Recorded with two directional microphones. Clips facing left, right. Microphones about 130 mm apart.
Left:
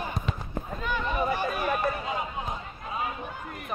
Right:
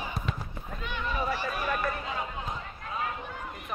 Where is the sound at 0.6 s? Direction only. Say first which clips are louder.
Left 6 dB; 45° left (ahead or behind).